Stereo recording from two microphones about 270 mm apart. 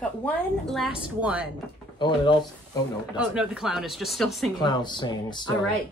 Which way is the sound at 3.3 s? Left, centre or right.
Centre.